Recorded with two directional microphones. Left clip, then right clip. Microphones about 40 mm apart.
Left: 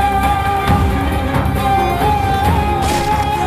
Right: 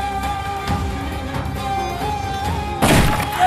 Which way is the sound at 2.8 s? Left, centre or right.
Left.